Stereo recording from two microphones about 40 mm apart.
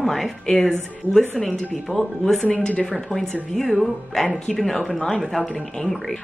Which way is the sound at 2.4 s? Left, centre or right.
Left.